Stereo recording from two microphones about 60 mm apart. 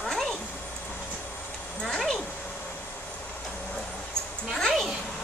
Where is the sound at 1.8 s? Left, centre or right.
Centre.